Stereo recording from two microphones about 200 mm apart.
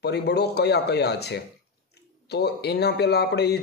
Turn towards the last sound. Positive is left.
turn(degrees=55)  # may be behind; listen again after turning